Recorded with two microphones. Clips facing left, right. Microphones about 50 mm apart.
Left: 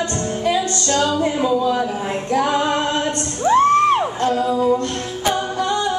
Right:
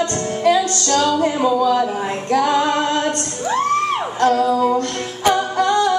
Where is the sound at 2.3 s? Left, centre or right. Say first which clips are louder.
Right 2 dB; right.